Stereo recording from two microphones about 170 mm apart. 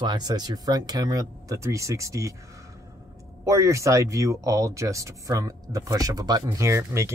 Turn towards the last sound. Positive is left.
turn(degrees=-15)  # may be behind; listen again after turning